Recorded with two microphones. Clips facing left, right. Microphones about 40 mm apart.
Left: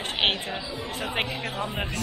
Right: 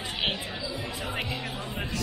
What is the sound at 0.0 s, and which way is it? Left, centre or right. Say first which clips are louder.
Chatter: left 5 dB; left.